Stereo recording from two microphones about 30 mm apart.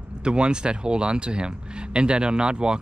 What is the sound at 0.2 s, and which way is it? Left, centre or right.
Speech, right.